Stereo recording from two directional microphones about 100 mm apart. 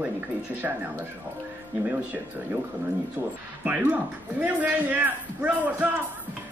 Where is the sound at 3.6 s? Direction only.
15° right (ahead or behind).